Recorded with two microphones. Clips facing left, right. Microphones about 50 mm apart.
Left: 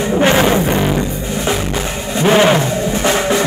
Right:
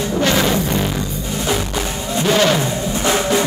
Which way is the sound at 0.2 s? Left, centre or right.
Left.